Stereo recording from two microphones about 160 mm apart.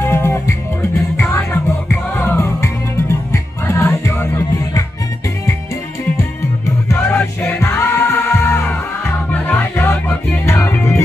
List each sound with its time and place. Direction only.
0.0 s music: 15° left (ahead or behind)
6.9 s music: 10° left (ahead or behind)